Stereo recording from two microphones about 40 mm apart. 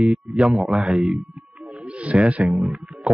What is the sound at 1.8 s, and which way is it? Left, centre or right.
Speech, right.